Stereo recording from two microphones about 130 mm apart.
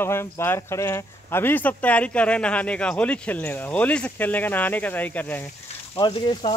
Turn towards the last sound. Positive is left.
turn(degrees=40)  # may be behind; listen again after turning